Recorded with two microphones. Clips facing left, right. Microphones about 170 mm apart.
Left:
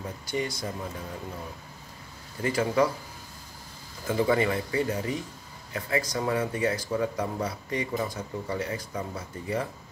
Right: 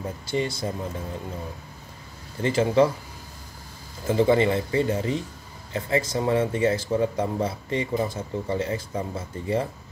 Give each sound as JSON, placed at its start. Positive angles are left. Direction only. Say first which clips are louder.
{"t": 0.3, "sound": "speech", "louder": "right 4 dB", "side_deg": -25}
{"t": 2.4, "sound": "speech", "louder": "right 5 dB", "side_deg": -25}
{"t": 4.1, "sound": "speech", "louder": "right 5 dB", "side_deg": -25}